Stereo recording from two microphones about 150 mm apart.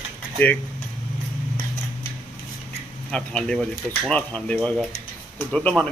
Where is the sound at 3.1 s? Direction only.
5° left (ahead or behind).